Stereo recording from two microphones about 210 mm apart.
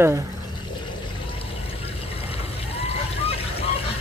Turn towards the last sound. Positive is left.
turn(degrees=30)  # may be behind; listen again after turning